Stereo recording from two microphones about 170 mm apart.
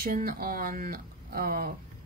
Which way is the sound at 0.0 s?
60° right (ahead or behind).